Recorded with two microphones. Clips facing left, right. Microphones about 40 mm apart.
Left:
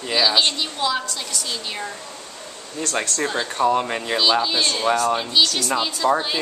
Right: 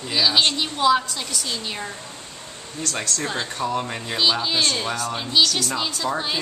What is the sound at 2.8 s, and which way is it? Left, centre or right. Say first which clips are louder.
Speech: left 3 dB; left.